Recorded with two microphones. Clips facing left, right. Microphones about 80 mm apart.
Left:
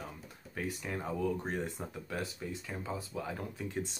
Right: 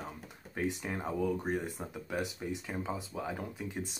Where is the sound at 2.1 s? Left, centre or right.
Centre.